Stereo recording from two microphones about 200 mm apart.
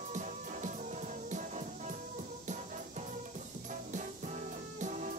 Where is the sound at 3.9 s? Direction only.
40° right (ahead or behind).